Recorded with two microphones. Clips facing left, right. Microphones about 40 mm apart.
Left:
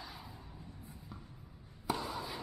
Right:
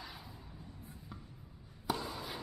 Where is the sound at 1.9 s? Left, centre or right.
Centre.